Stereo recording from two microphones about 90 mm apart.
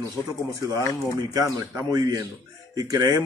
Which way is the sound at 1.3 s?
40° right (ahead or behind).